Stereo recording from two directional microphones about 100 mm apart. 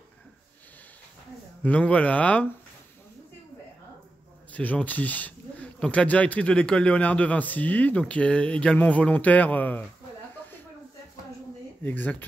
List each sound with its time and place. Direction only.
1.6 s speech: 15° left (ahead or behind)
4.5 s speech: 15° left (ahead or behind)
11.8 s speech: 15° left (ahead or behind)